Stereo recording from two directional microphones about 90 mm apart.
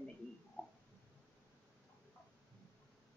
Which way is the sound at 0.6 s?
15° left (ahead or behind).